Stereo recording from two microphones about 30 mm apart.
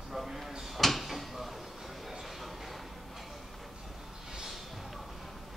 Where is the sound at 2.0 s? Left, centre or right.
Centre.